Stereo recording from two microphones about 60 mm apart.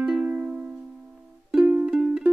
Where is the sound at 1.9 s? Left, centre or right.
Centre.